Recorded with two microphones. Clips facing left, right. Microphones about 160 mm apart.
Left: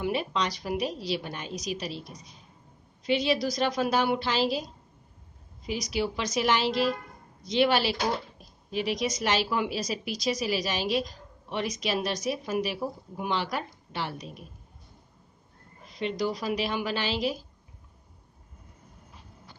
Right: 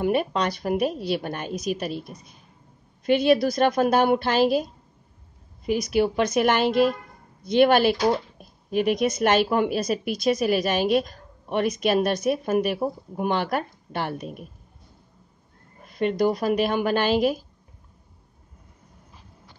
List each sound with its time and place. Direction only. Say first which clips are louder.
0.0 s a woman's voice: right 6 dB; 50° right (ahead or behind)
5.7 s speech: right 8 dB; 55° right (ahead or behind)
15.8 s speech: right 7 dB; 55° right (ahead or behind)